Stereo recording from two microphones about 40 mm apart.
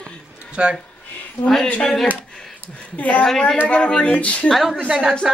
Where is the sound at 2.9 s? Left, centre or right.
Left.